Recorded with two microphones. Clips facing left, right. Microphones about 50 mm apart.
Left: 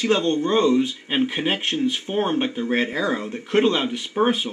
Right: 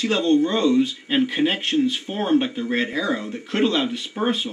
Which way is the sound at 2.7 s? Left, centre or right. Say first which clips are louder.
Left 1 dB; left.